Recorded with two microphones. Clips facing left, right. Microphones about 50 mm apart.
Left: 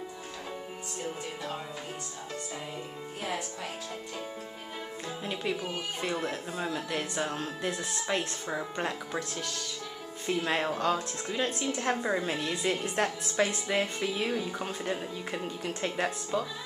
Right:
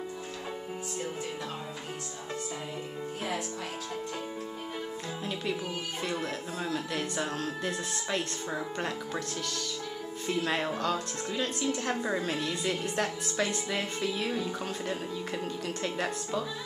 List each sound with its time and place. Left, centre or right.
6.0 s speech: centre
8.2 s speech: centre
10.2 s speech: centre